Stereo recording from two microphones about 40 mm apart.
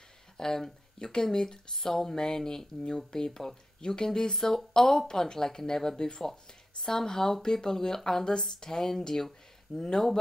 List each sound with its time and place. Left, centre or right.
0.4 s speech: centre